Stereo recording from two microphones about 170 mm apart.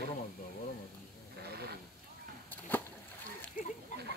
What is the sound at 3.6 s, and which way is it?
Speech, 50° left (ahead or behind).